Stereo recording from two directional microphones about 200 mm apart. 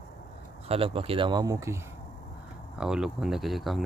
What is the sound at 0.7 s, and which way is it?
Speech, 30° right (ahead or behind).